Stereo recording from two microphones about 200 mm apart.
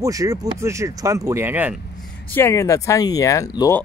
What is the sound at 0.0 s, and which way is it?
Speech, 15° right (ahead or behind).